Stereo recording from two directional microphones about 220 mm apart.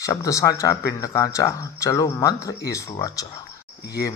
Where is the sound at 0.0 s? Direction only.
15° left (ahead or behind).